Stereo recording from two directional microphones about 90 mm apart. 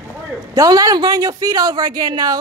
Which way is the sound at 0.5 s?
40° right (ahead or behind).